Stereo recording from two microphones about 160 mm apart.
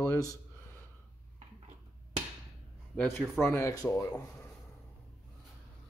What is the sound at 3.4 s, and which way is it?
Speech, 20° left (ahead or behind).